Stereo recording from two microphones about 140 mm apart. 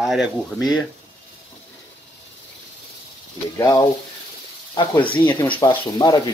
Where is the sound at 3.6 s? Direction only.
25° left (ahead or behind).